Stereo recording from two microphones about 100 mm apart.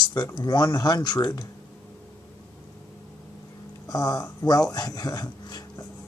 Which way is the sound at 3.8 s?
35° left (ahead or behind).